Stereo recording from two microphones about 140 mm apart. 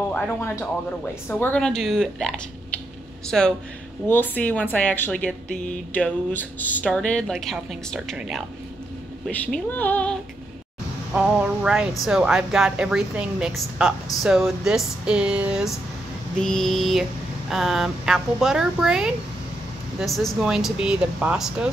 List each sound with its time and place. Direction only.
0.1 s a woman's voice: 20° left (ahead or behind); by 8.5 s centre (ahead or behind)
9.3 s a woman's voice: 10° left (ahead or behind)
11.1 s a woman's voice: 5° right (ahead or behind)
16.3 s a woman's voice: 5° left (ahead or behind)